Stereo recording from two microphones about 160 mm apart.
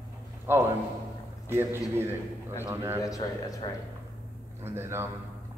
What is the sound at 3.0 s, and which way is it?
Speech, 20° left (ahead or behind).